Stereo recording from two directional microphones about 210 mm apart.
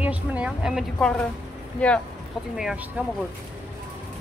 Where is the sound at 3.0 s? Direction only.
5° right (ahead or behind).